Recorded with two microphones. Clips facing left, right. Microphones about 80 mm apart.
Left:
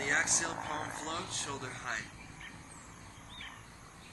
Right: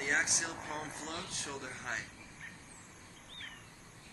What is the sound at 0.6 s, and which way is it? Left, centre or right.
Speech, centre.